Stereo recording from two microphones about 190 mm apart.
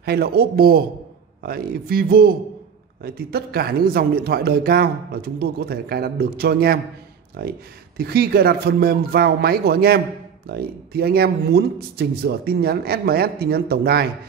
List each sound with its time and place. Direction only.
0.0 s speech: 55° right (ahead or behind)